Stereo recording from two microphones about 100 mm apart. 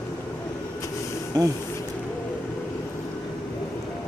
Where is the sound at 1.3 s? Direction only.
40° right (ahead or behind).